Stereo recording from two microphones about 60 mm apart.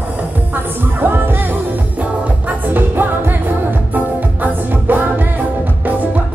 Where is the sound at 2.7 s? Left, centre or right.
Right.